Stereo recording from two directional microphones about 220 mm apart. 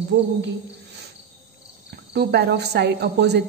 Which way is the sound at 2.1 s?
45° right (ahead or behind).